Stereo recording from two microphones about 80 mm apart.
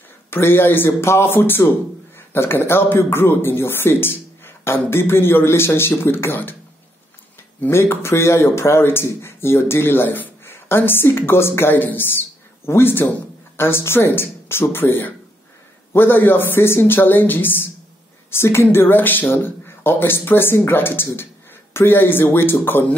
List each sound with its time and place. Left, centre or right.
0.3 s speech: left
7.6 s speech: left